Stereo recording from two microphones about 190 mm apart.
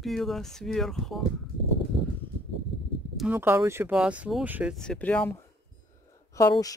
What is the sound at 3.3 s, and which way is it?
Speech, 15° right (ahead or behind).